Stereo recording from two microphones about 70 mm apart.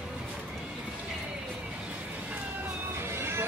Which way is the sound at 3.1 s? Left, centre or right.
Right.